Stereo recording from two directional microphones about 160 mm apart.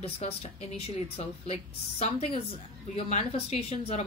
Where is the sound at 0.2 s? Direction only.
40° left (ahead or behind).